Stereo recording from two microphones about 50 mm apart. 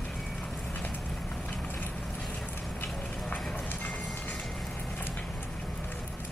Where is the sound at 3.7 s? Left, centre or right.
Left.